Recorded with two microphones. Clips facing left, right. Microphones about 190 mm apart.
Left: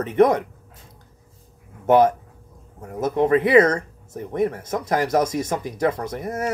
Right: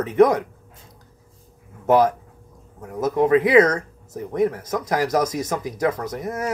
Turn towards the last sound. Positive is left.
turn(degrees=25)  # may be behind; listen again after turning